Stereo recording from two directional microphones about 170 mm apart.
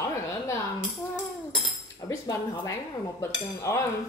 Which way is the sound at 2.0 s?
20° left (ahead or behind).